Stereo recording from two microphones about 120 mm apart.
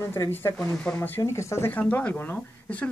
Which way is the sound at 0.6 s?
10° left (ahead or behind).